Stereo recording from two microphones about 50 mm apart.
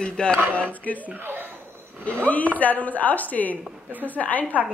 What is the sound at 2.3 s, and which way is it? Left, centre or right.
A woman's voice, left.